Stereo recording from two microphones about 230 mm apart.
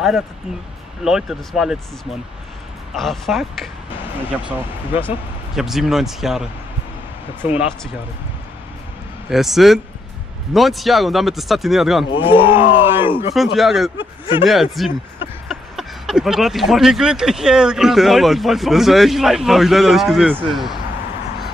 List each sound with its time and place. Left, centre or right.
1.0 s speech: centre
3.0 s speech: centre
9.3 s speech: centre
12.1 s speech: left
12.5 s speech: centre
13.9 s a man's voice: left
14.4 s speech: centre